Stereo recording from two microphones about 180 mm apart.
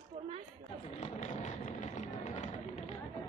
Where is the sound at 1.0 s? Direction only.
40° left (ahead or behind).